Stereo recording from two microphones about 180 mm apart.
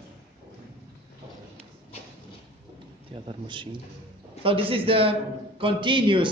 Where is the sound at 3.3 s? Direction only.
25° right (ahead or behind).